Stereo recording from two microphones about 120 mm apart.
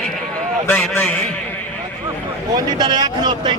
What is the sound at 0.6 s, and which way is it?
Speech, 15° left (ahead or behind).